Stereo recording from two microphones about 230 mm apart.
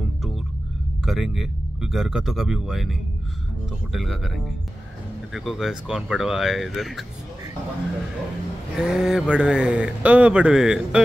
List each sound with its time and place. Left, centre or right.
1.0 s speech: centre
5.3 s speech: centre
8.7 s speech: centre